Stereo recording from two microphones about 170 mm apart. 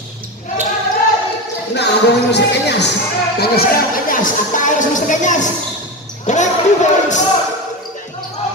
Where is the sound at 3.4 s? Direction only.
60° left (ahead or behind); by 6.4 s 45° left (ahead or behind).